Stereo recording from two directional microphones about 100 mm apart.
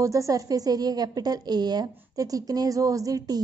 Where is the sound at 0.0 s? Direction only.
30° right (ahead or behind).